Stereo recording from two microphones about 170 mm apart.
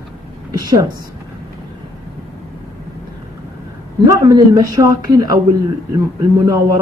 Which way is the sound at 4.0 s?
20° right (ahead or behind).